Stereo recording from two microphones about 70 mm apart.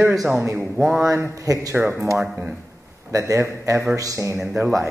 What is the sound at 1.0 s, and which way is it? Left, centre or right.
Speech, right.